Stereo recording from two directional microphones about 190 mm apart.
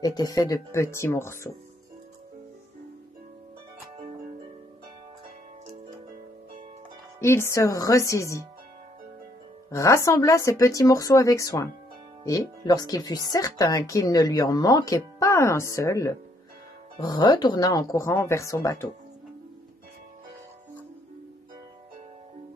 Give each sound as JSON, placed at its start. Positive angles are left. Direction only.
{"t": 0.0, "sound": "speech", "side_deg": 20}
{"t": 7.2, "sound": "speech", "side_deg": 15}
{"t": 9.7, "sound": "speech", "side_deg": 15}